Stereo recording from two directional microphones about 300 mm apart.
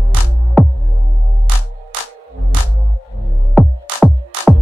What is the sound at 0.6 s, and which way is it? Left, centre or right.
Music, centre.